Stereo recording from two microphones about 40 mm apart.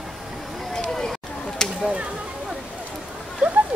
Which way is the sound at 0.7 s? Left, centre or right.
Centre.